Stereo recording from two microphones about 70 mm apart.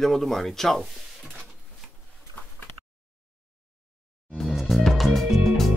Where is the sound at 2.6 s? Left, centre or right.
Left.